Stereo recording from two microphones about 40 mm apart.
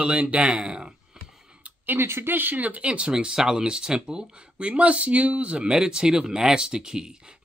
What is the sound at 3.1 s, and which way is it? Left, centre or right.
Speech, centre.